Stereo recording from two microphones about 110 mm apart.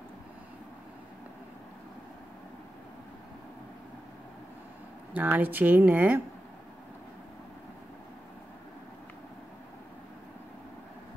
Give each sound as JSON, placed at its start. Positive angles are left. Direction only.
{"t": 5.1, "sound": "speech", "side_deg": -15}